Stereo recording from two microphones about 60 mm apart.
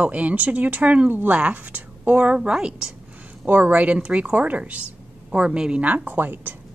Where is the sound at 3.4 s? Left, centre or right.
Right; by 5.8 s centre.